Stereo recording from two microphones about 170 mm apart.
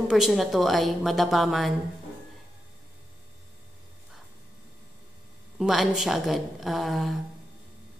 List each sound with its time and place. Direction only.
0.1 s a woman's voice: centre (ahead or behind)
5.6 s a woman's voice: centre (ahead or behind)